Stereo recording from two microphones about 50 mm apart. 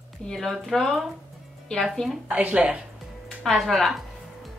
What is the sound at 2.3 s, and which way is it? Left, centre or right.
Speech, right.